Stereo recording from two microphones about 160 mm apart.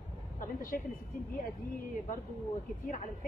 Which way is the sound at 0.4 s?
60° left (ahead or behind).